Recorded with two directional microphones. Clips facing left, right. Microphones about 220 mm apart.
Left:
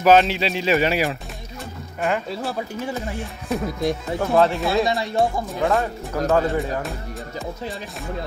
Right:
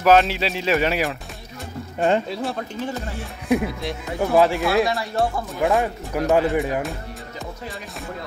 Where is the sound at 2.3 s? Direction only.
Centre (ahead or behind).